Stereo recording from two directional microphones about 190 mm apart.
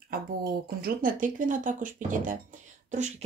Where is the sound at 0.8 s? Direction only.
45° right (ahead or behind).